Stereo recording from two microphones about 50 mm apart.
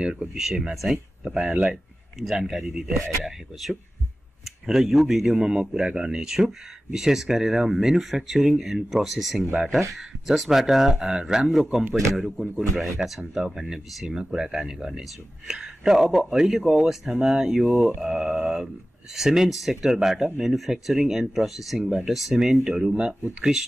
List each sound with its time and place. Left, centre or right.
0.0 s speech: centre
5.3 s speech: centre
11.4 s speech: centre
17.6 s speech: centre
18.0 s speech: centre